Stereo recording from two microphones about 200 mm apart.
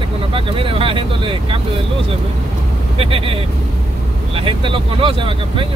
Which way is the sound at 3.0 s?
30° right (ahead or behind).